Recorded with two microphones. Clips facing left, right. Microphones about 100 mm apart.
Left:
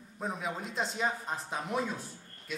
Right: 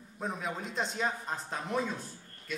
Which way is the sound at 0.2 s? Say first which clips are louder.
Even; centre (ahead or behind).